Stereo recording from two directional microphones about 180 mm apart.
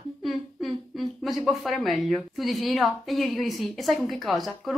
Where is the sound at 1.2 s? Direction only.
Centre (ahead or behind).